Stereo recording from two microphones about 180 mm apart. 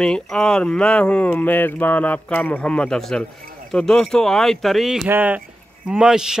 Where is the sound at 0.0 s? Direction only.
5° left (ahead or behind).